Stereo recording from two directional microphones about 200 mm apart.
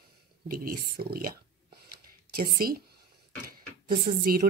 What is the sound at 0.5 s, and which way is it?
Speech, 45° right (ahead or behind).